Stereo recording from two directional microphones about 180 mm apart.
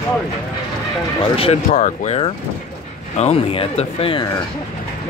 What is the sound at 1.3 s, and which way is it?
Speech, 35° left (ahead or behind).